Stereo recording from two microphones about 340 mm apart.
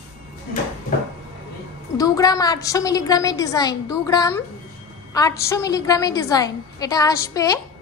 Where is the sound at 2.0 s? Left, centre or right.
Centre.